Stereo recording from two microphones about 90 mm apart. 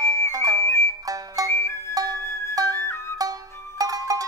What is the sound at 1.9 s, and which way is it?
Music, 40° right (ahead or behind).